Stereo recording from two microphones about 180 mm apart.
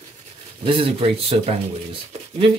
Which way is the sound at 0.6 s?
30° right (ahead or behind).